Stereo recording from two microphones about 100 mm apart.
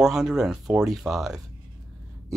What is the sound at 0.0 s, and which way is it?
Speech, 5° right (ahead or behind).